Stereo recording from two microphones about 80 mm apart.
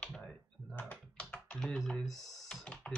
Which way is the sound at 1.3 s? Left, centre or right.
Centre.